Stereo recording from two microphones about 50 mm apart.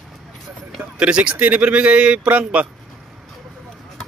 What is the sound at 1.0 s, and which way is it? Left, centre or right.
Speech, right.